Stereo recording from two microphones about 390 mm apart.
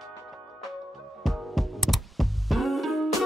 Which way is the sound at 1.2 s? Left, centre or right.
Centre.